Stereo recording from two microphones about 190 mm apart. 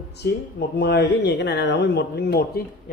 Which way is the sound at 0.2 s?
60° left (ahead or behind).